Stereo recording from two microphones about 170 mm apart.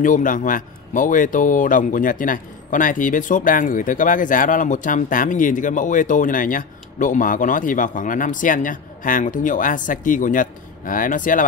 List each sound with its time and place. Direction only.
0.0 s a man's voice: 50° left (ahead or behind)